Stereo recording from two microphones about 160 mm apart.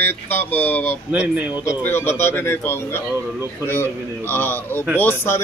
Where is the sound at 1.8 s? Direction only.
15° left (ahead or behind).